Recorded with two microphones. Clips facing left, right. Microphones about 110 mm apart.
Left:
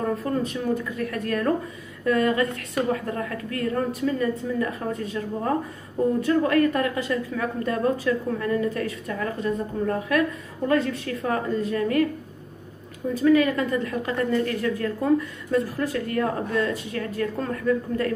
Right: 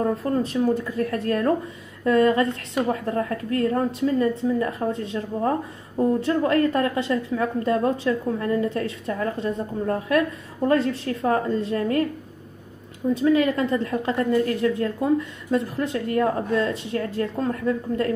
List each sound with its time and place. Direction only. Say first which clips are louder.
0.0 s a woman's voice: right 2 dB; 35° right (ahead or behind)
13.1 s a woman's voice: even; 25° right (ahead or behind)